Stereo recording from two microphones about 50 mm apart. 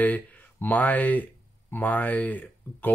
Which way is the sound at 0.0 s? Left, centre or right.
Left.